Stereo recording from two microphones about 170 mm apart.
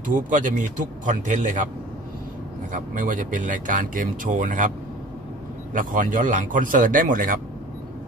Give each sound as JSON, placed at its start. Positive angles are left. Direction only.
{"t": 0.0, "sound": "speech", "side_deg": -50}
{"t": 2.7, "sound": "speech", "side_deg": -50}